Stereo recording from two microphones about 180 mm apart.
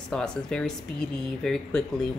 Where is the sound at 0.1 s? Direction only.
5° left (ahead or behind).